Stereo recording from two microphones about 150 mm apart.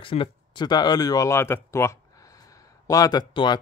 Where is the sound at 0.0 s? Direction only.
35° left (ahead or behind).